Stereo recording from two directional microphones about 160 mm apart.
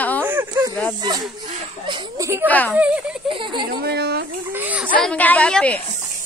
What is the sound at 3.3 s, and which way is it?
Speech, 30° right (ahead or behind).